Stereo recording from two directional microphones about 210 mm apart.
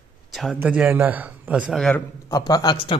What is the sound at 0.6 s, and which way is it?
A man's voice, 5° right (ahead or behind).